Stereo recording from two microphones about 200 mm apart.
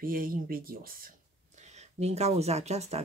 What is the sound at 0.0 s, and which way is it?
Speech, 45° right (ahead or behind).